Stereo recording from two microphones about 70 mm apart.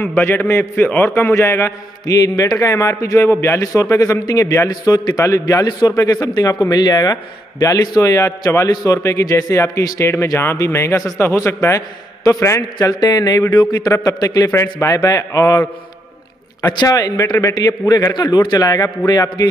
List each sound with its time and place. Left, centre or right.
0.0 s a man's voice: left
2.0 s a man's voice: left
12.7 s a man's voice: left
13.9 s a man's voice: left
14.5 s a man's voice: left
16.7 s a man's voice: left